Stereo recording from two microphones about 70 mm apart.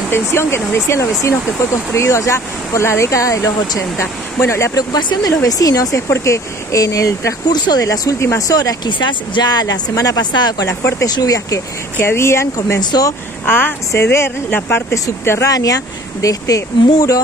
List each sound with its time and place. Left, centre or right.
0.1 s speech: left
4.7 s speech: left
6.0 s speech: left
7.4 s speech: left
7.8 s speech: left
8.2 s speech: left
8.5 s speech: left
10.7 s speech: left
11.1 s speech: left
12.0 s speech: left
13.5 s speech: left
15.4 s speech: left